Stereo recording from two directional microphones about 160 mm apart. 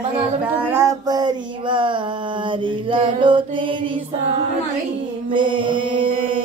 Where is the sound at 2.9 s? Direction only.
30° right (ahead or behind).